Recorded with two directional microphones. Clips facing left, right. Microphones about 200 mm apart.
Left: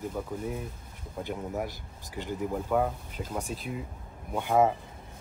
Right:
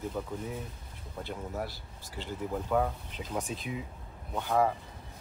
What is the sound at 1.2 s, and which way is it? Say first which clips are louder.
Speech: left 4 dB; 15° left (ahead or behind).